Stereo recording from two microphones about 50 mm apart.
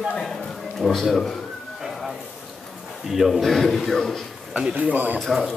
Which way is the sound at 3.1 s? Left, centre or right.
Centre.